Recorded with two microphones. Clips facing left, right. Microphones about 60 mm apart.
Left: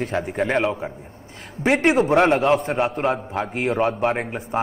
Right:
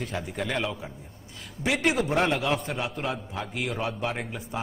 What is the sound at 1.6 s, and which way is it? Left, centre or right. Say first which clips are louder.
A man's voice: left 8 dB; left.